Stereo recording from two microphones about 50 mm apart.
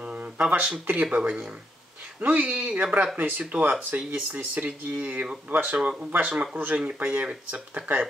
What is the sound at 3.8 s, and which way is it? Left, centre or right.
Speech, right.